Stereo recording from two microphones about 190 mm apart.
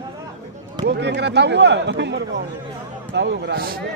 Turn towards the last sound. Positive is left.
turn(degrees=-50)  # may be behind; listen again after turning